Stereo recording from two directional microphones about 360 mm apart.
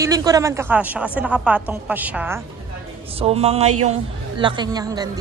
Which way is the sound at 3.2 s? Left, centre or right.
Centre.